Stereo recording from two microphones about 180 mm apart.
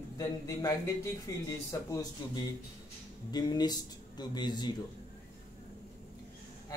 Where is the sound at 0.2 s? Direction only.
15° left (ahead or behind).